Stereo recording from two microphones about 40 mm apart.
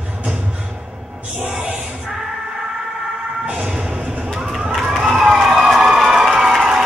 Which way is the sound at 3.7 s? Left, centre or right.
Right.